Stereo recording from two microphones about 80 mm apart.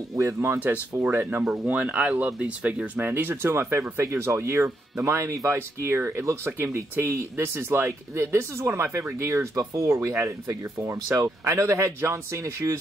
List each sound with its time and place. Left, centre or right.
0.1 s speech: right
0.6 s speech: right